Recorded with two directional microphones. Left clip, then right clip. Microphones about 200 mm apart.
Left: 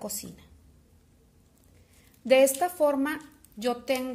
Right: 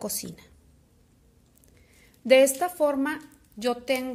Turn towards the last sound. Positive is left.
turn(degrees=-15)  # may be behind; listen again after turning